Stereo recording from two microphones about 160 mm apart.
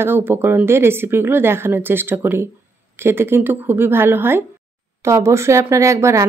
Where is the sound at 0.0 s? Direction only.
15° right (ahead or behind).